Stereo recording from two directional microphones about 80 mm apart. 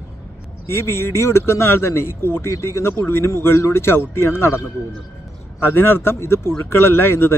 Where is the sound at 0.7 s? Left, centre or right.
Left.